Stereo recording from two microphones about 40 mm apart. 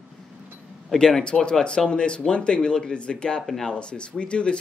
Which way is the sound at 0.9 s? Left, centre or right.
Centre.